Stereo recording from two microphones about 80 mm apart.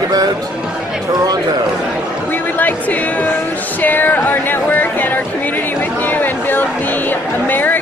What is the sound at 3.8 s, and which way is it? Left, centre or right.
Speech, left.